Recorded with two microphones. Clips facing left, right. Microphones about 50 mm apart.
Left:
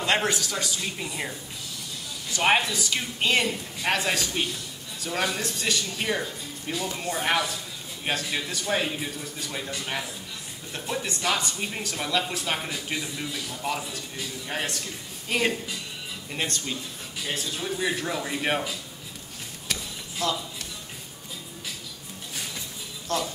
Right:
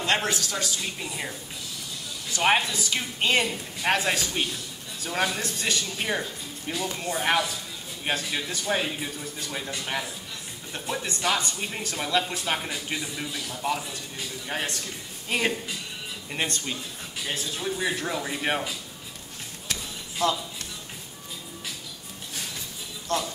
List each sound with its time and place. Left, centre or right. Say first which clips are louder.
0.0 s a man's voice: left 1 dB; centre
2.3 s a man's voice: even; centre
17.6 s a man's voice: even; centre
20.2 s speech: right 3 dB; centre
23.1 s a man's voice: even; centre